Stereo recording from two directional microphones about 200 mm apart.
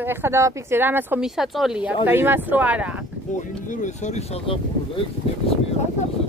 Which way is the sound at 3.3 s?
40° left (ahead or behind).